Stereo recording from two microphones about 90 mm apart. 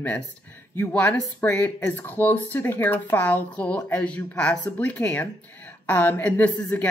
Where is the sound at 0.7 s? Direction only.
15° left (ahead or behind).